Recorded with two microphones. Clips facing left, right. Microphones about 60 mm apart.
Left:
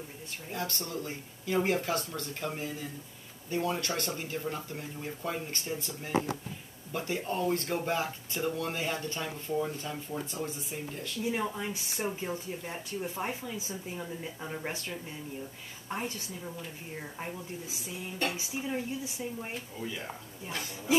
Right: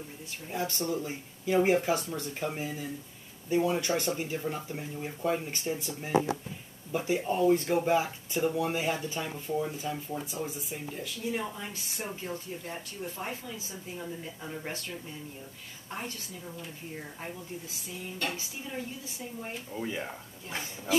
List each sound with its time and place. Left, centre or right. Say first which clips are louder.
0.5 s speech: right 5 dB; centre
11.3 s speech: left 2 dB; centre
18.2 s speech: left 4 dB; centre